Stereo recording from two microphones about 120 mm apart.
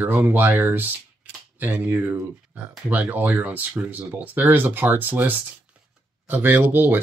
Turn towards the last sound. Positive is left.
turn(degrees=-15)  # may be behind; listen again after turning